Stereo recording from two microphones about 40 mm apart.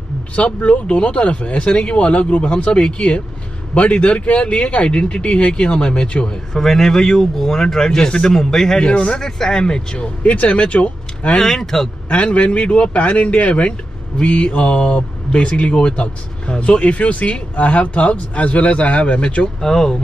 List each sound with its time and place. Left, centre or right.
0.6 s speech: left
6.6 s speech: centre
8.8 s speech: left
9.2 s speech: centre; by 11.3 s left
11.3 s speech: centre
12.1 s speech: left
19.6 s speech: centre